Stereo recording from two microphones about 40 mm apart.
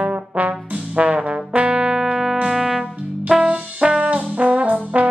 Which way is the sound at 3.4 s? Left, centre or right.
Right.